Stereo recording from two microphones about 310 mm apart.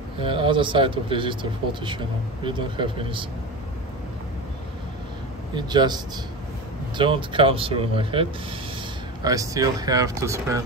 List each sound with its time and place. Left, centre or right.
0.2 s speech: centre
5.5 s speech: centre
7.0 s speech: centre